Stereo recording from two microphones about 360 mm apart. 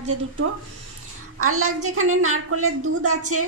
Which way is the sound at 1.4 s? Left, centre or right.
Right.